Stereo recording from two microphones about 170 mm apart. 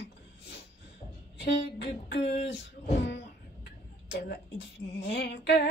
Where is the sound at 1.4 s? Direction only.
75° left (ahead or behind).